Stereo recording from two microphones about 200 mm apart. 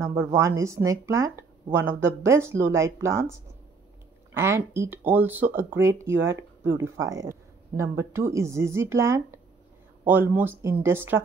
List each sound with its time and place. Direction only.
0.0 s speech: 15° right (ahead or behind)
6.2 s a sound: 15° right (ahead or behind)
6.7 s speech: 70° right (ahead or behind)
7.1 s speech: 15° right (ahead or behind)